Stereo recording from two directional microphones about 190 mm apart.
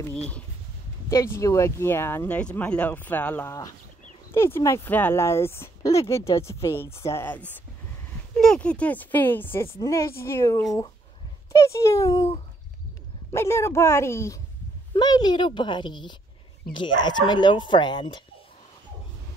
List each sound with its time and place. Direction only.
0.1 s speech: 5° left (ahead or behind)
1.1 s speech: 15° left (ahead or behind)
13.3 s speech: 15° left (ahead or behind)